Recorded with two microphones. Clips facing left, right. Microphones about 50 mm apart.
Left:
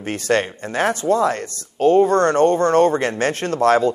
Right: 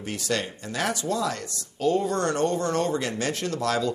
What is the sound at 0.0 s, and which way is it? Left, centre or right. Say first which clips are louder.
Speech: left 9 dB; left.